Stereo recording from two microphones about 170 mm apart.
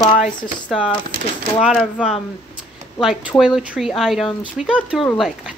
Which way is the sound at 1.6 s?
Centre (ahead or behind).